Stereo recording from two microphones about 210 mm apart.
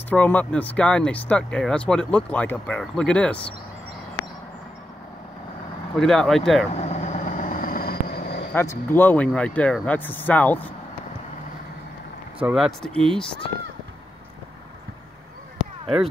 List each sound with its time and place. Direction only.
0.1 s speech: 5° left (ahead or behind)
5.9 s speech: centre (ahead or behind)
6.7 s vehicle: 30° left (ahead or behind); by 8.5 s 50° left (ahead or behind)
8.5 s speech: 10° left (ahead or behind)
12.4 s speech: 5° right (ahead or behind)